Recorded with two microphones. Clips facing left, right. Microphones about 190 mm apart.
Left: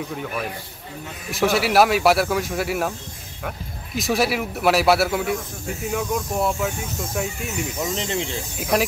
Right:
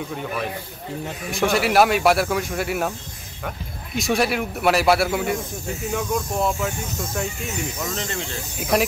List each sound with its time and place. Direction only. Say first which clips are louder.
0.1 s speech: right 1 dB; centre (ahead or behind)
7.8 s speech: left 3 dB; 20° left (ahead or behind)
8.5 s speech: right 1 dB; centre (ahead or behind)